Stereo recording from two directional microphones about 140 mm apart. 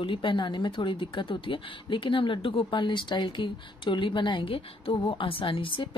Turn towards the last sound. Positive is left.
turn(degrees=40)  # may be behind; listen again after turning